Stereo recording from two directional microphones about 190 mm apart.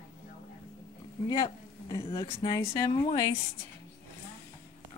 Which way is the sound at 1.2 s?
25° left (ahead or behind).